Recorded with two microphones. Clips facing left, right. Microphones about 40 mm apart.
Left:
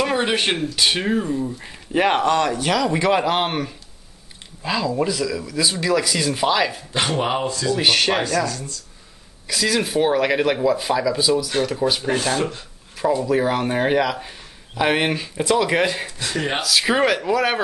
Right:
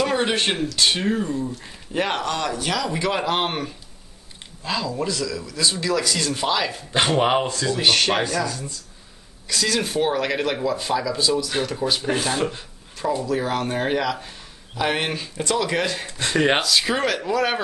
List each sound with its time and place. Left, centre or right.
0.0 s speech: centre
6.9 s speech: centre
7.7 s speech: centre
8.5 s speech: centre
9.5 s speech: centre
12.1 s speech: centre
12.9 s speech: centre